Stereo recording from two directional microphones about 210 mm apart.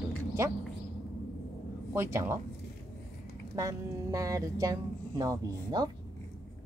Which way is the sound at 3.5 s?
15° right (ahead or behind).